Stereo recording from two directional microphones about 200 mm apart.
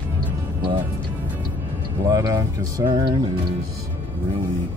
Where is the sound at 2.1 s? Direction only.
15° right (ahead or behind).